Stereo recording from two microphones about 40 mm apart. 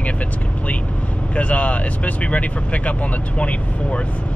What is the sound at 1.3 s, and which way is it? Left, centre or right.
Speech, left.